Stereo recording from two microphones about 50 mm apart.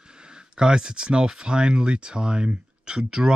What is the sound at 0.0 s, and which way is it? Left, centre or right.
Speech, centre.